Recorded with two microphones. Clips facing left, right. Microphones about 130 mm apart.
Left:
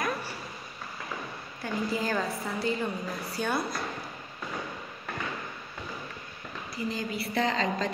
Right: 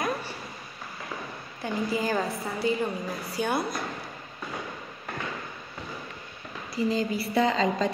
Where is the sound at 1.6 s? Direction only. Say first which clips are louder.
Right 2 dB; 15° right (ahead or behind).